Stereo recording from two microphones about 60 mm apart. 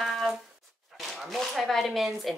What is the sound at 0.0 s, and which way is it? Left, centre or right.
Music, centre.